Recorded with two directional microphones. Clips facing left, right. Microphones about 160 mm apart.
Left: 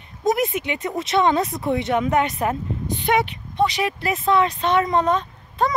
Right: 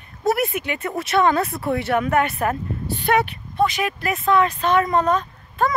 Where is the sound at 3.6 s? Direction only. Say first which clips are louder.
Even; 30° left (ahead or behind).